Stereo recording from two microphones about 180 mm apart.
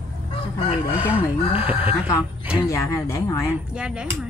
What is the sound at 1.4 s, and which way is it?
Speech, 30° left (ahead or behind).